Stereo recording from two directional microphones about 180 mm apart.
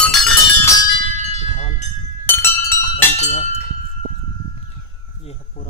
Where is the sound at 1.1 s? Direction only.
35° left (ahead or behind).